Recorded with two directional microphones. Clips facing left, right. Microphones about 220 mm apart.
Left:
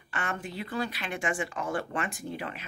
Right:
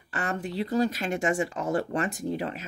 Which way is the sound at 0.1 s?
35° right (ahead or behind).